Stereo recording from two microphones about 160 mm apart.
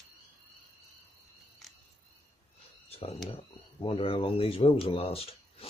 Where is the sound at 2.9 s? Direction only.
40° left (ahead or behind).